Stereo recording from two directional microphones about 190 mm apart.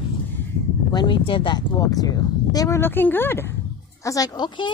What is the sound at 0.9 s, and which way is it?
A woman's voice, 25° left (ahead or behind).